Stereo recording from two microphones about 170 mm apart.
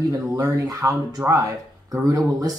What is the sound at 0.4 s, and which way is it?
Speech, 20° right (ahead or behind).